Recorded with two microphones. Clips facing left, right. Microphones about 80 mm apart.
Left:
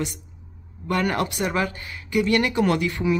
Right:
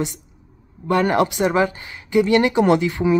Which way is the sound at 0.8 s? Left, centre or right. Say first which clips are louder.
Right 6 dB; right.